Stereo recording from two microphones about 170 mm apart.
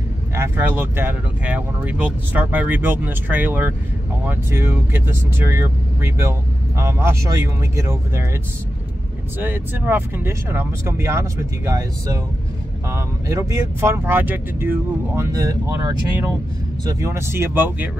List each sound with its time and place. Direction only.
0.3 s speech: 15° right (ahead or behind)
9.4 s speech: 10° right (ahead or behind)